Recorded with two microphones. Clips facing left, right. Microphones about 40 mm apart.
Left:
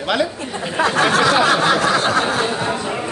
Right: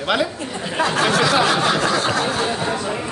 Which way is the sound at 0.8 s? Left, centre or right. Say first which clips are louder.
Left 3 dB; left.